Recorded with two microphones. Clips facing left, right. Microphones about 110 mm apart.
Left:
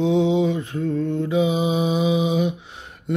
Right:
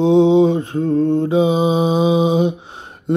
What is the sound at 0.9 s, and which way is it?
Mantra, 55° right (ahead or behind).